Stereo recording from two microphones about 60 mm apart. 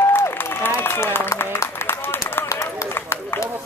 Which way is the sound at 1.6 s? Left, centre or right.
Left.